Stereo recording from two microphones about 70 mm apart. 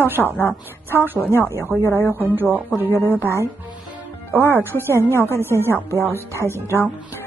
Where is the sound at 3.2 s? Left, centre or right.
Right.